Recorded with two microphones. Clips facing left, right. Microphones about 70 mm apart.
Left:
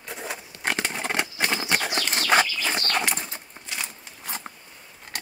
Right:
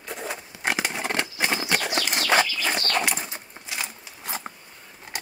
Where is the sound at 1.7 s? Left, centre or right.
Centre.